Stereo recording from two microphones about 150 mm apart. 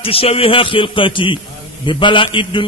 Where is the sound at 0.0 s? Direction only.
40° left (ahead or behind).